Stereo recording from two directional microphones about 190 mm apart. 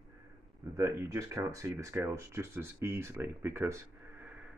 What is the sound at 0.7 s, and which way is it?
Speech, 15° right (ahead or behind).